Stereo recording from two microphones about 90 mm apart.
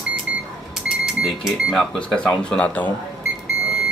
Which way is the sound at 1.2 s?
5° left (ahead or behind).